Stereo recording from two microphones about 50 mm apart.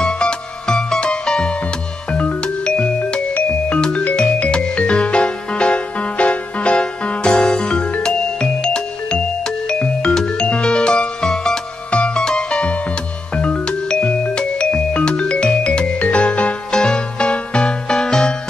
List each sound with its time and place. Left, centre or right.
0.0 s music: centre
11.9 s music: left